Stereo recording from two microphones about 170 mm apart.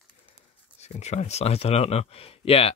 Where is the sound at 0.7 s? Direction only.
40° left (ahead or behind).